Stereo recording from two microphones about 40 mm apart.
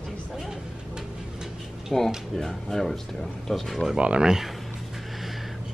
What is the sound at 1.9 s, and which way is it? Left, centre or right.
Speech, centre.